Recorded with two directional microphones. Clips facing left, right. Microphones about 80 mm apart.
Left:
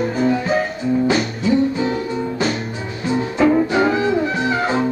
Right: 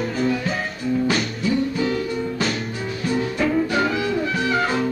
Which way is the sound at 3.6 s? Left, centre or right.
Left.